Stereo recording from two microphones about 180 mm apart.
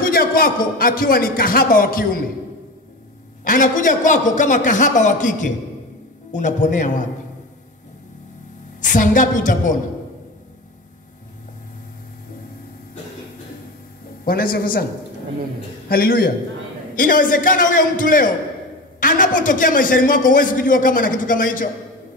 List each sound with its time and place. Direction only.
0.0 s a man's voice: 55° left (ahead or behind)
3.4 s a man's voice: 45° left (ahead or behind)
8.8 s a man's voice: 45° left (ahead or behind)
14.2 s a man's voice: 55° left (ahead or behind)
15.9 s a man's voice: 55° left (ahead or behind)